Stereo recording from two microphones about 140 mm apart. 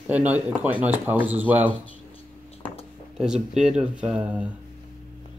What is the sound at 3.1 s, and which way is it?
Speech, 5° right (ahead or behind).